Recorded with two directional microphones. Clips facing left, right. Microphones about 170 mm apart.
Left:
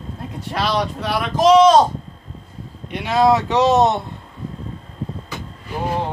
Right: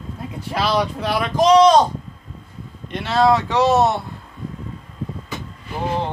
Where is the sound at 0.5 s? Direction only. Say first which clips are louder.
Right 1 dB; centre (ahead or behind).